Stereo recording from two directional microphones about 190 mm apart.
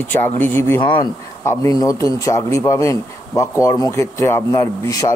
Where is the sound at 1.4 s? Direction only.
15° left (ahead or behind).